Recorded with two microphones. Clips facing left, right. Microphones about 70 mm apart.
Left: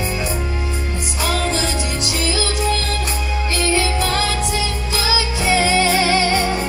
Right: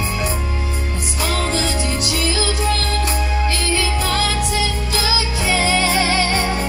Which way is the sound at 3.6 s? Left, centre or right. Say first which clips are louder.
Left 2 dB; left.